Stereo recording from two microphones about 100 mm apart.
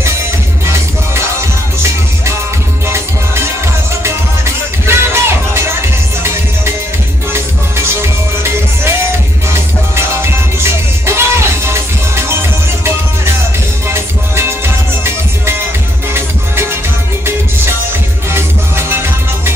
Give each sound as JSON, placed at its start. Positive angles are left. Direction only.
{"t": 4.8, "sound": "music", "side_deg": -25}
{"t": 9.5, "sound": "music", "side_deg": -25}
{"t": 18.3, "sound": "music", "side_deg": -25}